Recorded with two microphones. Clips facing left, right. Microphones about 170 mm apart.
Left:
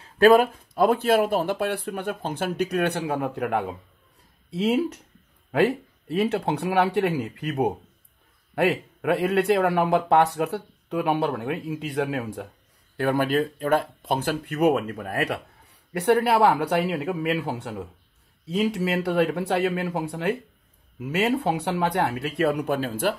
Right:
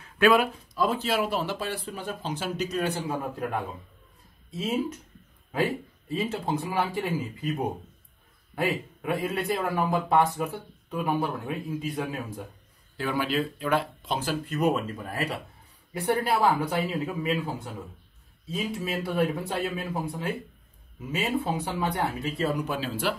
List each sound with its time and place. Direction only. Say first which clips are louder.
0.0 s speech: left 5 dB; 40° left (ahead or behind); by 12.4 s 75° left (ahead or behind)
12.9 s speech: left 5 dB; 55° left (ahead or behind)